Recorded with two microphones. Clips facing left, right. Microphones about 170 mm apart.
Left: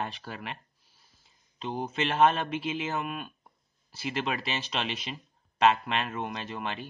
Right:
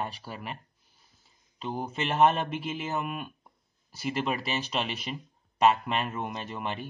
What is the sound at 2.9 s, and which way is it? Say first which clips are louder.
Speech: right 1 dB; 10° right (ahead or behind).